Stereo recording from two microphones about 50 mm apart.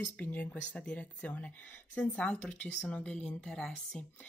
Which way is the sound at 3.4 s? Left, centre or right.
Centre.